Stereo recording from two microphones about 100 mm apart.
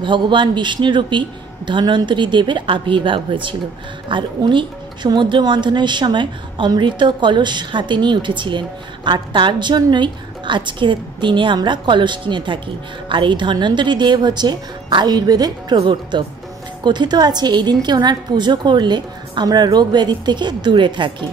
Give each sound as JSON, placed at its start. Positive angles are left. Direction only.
{"t": 0.0, "sound": "a woman's voice", "side_deg": -55}